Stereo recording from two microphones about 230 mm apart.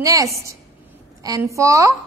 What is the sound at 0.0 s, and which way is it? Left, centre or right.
A woman's voice, centre.